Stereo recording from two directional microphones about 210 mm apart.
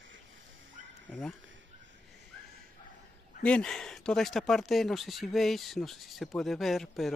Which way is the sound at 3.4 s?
5° left (ahead or behind).